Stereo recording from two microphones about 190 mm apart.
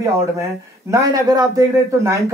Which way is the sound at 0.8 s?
15° right (ahead or behind).